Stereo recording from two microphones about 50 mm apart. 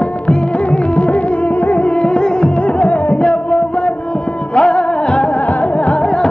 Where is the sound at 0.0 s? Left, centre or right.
Left.